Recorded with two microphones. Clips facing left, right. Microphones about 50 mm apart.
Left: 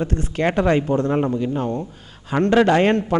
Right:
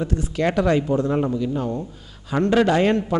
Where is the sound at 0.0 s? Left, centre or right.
Left.